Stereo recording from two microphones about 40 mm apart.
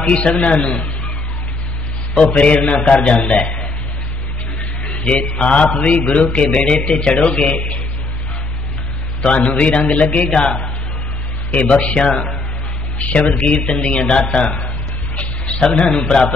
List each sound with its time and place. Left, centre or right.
0.1 s speech: left
2.1 s mantra: left
2.9 s speech: left
5.0 s mantra: left
6.4 s speech: left
9.6 s mantra: left
11.5 s speech: left
13.0 s mantra: left
13.4 s speech: left
15.1 s a sound: left
16.1 s speech: left